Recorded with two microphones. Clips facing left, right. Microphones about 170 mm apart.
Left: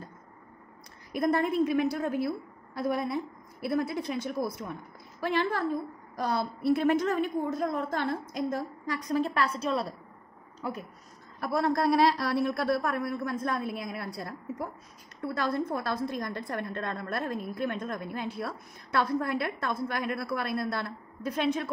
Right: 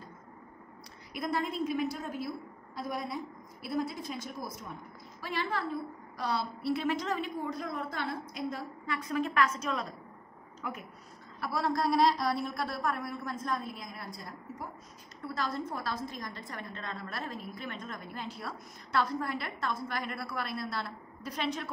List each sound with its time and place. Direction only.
1.1 s a woman's voice: 55° left (ahead or behind)
5.2 s a woman's voice: 55° left (ahead or behind); by 10.9 s 35° left (ahead or behind)
11.4 s a woman's voice: 50° left (ahead or behind)